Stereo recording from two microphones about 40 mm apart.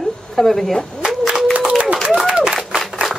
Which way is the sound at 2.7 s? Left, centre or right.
Right.